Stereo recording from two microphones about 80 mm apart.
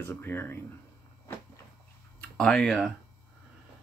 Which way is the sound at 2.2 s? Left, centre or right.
Centre.